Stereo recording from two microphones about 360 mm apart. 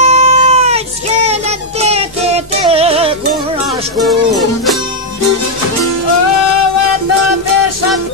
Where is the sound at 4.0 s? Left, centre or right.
Centre.